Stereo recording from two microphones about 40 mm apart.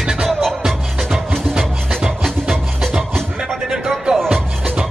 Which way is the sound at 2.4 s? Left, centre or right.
Centre.